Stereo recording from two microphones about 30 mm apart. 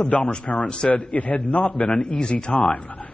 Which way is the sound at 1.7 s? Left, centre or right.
Left.